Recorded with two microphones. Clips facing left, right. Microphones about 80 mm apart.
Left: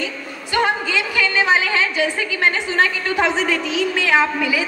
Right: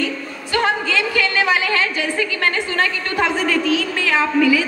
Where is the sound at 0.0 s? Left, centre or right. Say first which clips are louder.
Right 4 dB; centre.